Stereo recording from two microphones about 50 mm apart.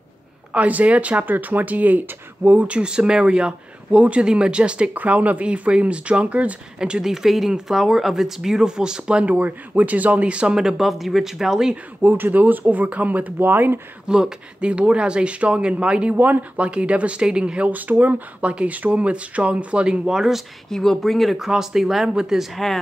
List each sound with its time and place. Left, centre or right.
0.5 s speech: right
6.8 s speech: centre
9.2 s speech: right; by 11.7 s centre
12.0 s speech: right
14.0 s speech: centre
17.6 s speech: right; by 20.4 s centre
20.7 s speech: centre